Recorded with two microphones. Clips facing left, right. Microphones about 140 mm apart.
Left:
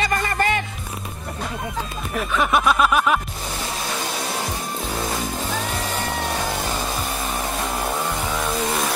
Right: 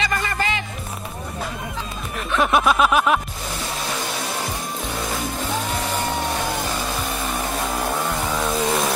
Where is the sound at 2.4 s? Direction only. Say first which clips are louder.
Right 1 dB; centre (ahead or behind).